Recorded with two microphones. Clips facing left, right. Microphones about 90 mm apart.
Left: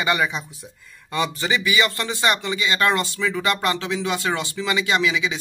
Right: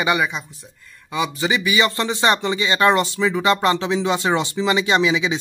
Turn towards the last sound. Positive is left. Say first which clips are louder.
# right 3 dB
turn(degrees=-25)  # may be behind; listen again after turning